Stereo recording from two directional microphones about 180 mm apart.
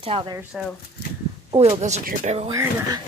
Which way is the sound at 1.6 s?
35° right (ahead or behind).